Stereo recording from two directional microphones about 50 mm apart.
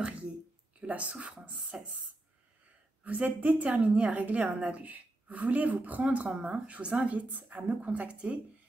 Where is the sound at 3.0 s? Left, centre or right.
Right.